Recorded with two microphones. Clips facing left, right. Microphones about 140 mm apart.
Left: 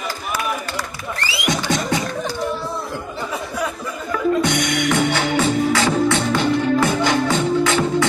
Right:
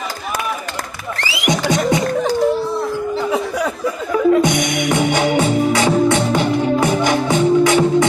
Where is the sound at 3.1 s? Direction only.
75° right (ahead or behind).